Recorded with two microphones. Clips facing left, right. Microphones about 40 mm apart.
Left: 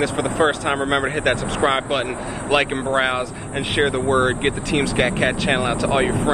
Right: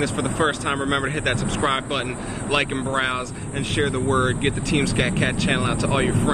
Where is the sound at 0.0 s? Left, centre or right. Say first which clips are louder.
Left 3 dB; centre.